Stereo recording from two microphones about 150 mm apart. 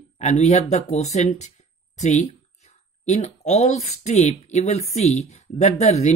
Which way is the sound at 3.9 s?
50° left (ahead or behind).